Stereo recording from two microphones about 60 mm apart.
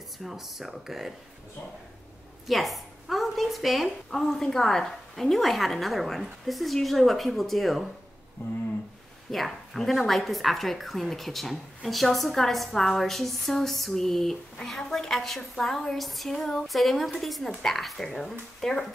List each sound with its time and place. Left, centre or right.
0.2 s a woman's voice: centre
2.4 s a woman's voice: centre
8.4 s a sound: left
9.3 s a woman's voice: centre